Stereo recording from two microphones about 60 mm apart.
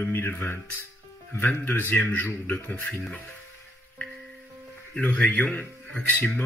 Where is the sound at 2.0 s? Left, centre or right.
Left.